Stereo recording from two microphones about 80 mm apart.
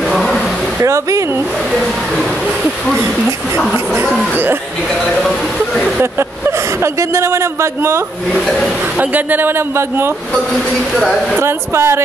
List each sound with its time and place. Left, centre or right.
0.1 s a sound: centre
0.7 s speech: right
1.7 s speech: centre
3.3 s a man's voice: right
4.0 s speech: centre
6.8 s speech: right
8.3 s speech: centre
8.9 s a man's voice: centre
11.3 s speech: right